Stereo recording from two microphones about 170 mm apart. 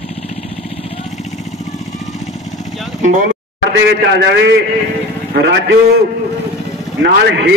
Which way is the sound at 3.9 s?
75° right (ahead or behind).